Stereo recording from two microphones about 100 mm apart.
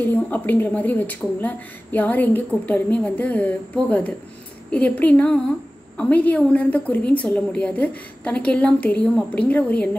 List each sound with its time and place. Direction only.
0.0 s speech: 20° left (ahead or behind)